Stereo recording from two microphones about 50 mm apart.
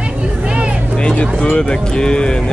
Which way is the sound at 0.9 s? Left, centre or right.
Centre.